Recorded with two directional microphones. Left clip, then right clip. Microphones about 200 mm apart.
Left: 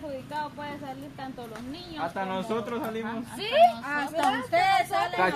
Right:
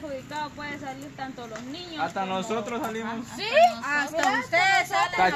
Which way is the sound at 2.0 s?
50° right (ahead or behind).